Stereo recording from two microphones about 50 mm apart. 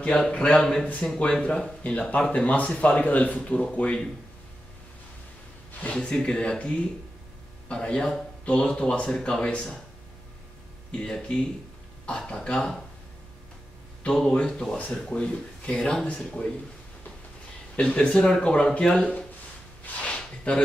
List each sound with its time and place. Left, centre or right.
0.0 s a man's voice: centre
0.3 s speech: left
0.6 s speech: centre
1.2 s speech: left
5.8 s speech: left
10.9 s speech: left
11.1 s speech: centre
14.3 s speech: centre
17.7 s speech: left
20.1 s a sound: left